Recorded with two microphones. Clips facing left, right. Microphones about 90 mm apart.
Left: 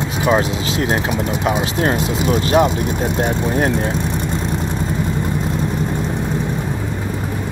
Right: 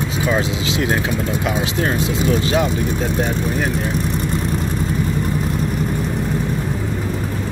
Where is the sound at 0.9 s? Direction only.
20° left (ahead or behind).